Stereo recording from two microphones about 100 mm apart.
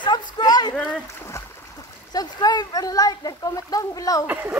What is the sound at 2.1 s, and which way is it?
Speech, 40° left (ahead or behind).